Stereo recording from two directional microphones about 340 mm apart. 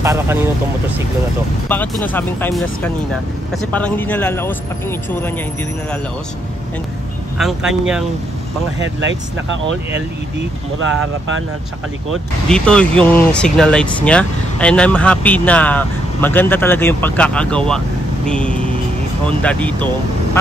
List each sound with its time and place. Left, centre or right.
0.0 s speech: centre
1.7 s speech: centre
7.3 s speech: centre
8.7 s speech: right
10.8 s speech: right
12.4 s speech: centre